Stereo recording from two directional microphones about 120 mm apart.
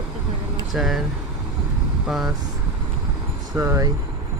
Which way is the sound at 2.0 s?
Centre (ahead or behind).